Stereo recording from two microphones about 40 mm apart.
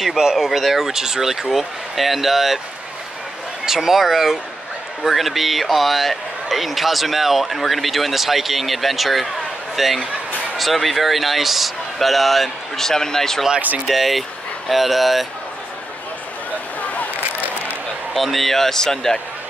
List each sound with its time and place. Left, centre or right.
0.2 s a man's voice: centre
3.6 s a man's voice: centre
13.8 s a man's voice: centre
16.8 s a sound: left
18.1 s a man's voice: centre